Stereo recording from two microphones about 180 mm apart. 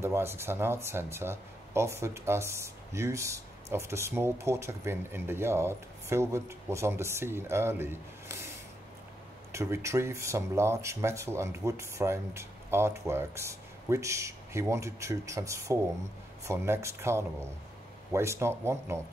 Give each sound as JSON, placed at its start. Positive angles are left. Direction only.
{"t": 0.0, "sound": "speech", "side_deg": -15}
{"t": 9.5, "sound": "speech", "side_deg": -15}